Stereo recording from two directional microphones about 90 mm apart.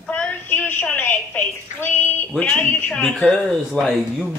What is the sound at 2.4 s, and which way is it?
Speech, 15° left (ahead or behind).